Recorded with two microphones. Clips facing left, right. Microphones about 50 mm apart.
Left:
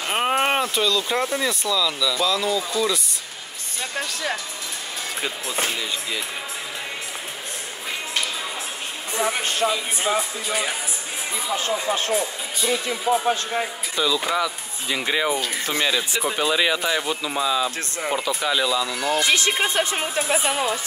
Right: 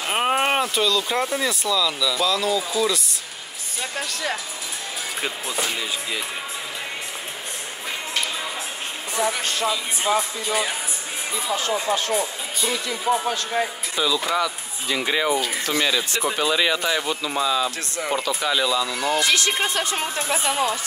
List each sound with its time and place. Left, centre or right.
0.0 s speech: centre
5.7 s speech: centre
9.3 s speech: left
10.0 s speech: centre
12.1 s speech: centre
19.1 s speech: left
20.2 s a woman's voice: centre